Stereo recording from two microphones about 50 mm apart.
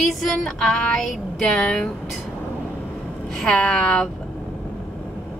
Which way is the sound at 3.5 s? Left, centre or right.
Centre.